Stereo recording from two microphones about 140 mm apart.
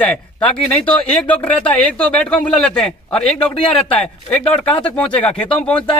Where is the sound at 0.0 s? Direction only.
10° left (ahead or behind).